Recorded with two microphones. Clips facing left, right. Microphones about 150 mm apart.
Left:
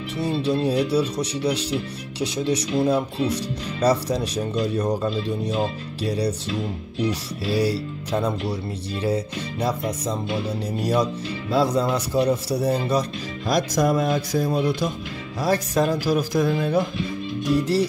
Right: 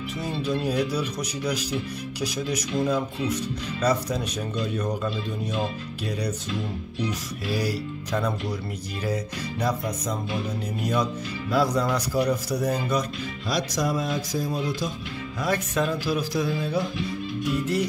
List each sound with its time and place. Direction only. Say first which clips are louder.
0.2 s speech: left 6 dB; 30° left (ahead or behind)
11.5 s speech: left 3 dB; 25° left (ahead or behind)
13.5 s speech: left 6 dB; 50° left (ahead or behind)
15.4 s a man's voice: left 4 dB; 35° left (ahead or behind); by 16.8 s 55° left (ahead or behind)
17.5 s speech: left 5 dB; 35° left (ahead or behind)